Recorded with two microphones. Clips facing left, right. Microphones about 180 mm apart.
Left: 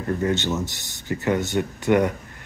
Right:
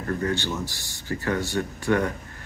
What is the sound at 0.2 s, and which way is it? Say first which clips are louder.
Speech: left 4 dB; 20° left (ahead or behind).